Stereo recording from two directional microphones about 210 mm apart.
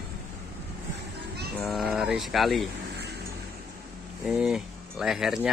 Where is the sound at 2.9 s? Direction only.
50° right (ahead or behind).